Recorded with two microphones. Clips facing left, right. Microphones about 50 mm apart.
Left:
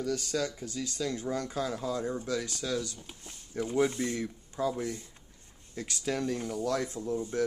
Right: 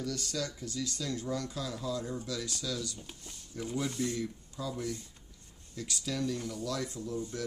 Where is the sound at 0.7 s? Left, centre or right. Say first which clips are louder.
Left 3 dB; left.